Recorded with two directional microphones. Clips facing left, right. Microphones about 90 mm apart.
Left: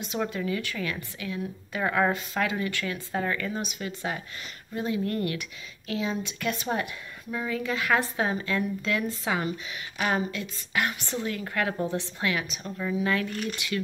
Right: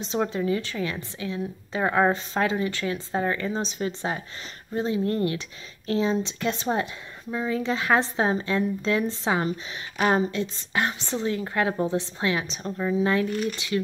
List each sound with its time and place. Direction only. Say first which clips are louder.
0.0 s a woman's voice: right 4 dB; 30° right (ahead or behind)